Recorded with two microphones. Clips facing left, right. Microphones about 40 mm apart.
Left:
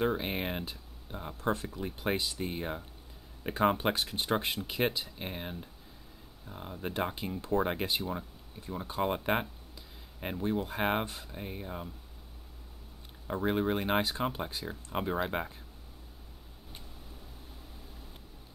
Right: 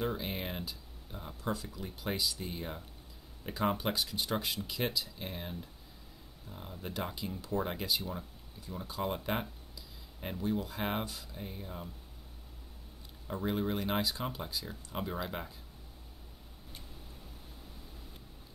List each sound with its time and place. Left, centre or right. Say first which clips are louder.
0.0 s speech: left 5 dB; left
13.4 s speech: left 4 dB; left